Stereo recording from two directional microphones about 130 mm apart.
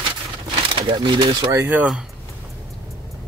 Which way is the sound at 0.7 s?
40° right (ahead or behind).